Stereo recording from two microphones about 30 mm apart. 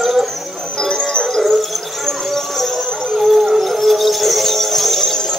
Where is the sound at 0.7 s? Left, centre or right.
Centre.